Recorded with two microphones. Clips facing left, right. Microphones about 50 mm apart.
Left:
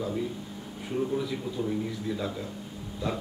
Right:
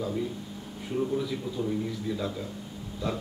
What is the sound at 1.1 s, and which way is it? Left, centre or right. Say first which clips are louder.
A man's voice: even; centre.